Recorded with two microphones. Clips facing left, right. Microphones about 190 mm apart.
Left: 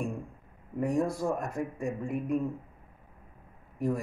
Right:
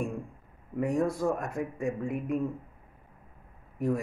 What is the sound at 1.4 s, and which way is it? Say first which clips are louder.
Speech: right 1 dB; 5° right (ahead or behind).